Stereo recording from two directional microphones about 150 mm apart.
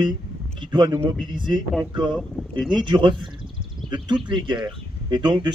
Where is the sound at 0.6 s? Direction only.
30° right (ahead or behind).